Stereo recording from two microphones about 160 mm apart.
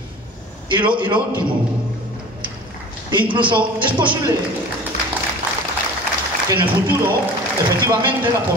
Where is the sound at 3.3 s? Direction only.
30° right (ahead or behind).